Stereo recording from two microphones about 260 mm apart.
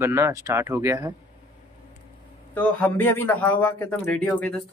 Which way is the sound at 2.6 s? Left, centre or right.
Centre.